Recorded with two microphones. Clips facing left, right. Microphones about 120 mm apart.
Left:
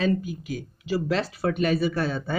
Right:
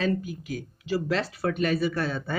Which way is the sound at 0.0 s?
15° left (ahead or behind).